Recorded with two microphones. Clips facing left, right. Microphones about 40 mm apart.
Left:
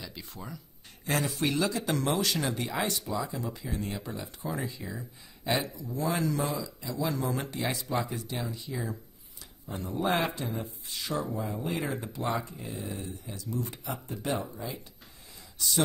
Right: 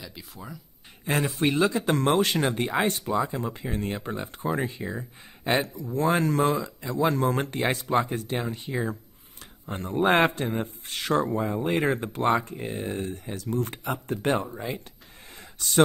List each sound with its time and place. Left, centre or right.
0.0 s speech: centre
1.0 s a man's voice: right